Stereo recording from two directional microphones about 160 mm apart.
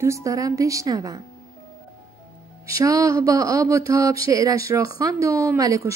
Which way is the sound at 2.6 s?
20° right (ahead or behind).